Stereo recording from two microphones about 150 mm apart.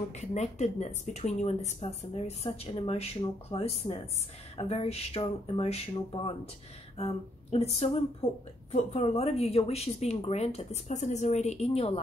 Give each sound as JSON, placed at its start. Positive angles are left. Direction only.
{"t": 0.1, "sound": "speech", "side_deg": 50}